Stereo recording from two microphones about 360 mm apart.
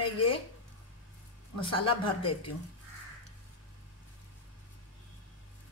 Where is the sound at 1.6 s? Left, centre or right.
Centre.